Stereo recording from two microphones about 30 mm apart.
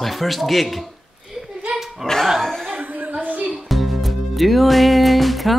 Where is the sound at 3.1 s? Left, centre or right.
Right.